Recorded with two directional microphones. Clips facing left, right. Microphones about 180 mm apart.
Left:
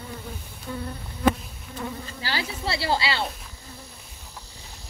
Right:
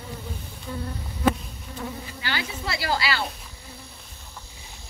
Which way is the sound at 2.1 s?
35° left (ahead or behind).